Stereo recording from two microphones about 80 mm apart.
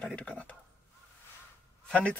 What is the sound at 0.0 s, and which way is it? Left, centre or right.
Speech, centre.